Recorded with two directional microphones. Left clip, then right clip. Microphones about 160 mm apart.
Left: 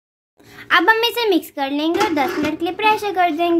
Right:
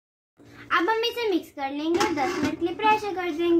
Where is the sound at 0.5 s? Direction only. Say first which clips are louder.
Left 9 dB; 85° left.